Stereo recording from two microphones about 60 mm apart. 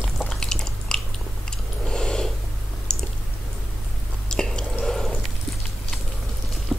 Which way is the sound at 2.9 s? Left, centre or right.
Centre.